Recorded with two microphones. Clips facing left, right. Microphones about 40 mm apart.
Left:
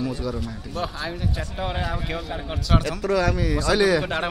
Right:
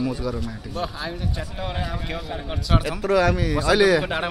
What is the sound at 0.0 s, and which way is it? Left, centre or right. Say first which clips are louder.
Speech: right 1 dB; centre.